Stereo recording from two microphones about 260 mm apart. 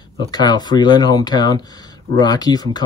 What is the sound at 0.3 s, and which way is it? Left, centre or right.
Speech, centre.